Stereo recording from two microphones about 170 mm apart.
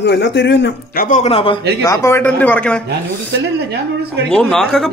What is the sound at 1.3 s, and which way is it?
Speech, 30° left (ahead or behind).